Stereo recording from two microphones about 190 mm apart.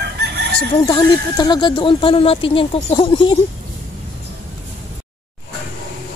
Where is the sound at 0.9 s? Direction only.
20° left (ahead or behind).